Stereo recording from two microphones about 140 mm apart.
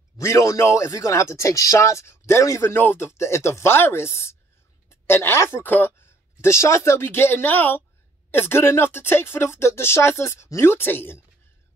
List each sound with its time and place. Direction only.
0.2 s speech: 20° left (ahead or behind)